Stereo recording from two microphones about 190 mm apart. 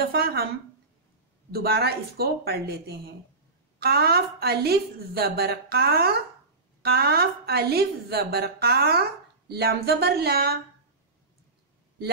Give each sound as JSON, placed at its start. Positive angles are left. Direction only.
{"t": 0.0, "sound": "a woman's voice", "side_deg": -55}
{"t": 1.5, "sound": "a woman's voice", "side_deg": -55}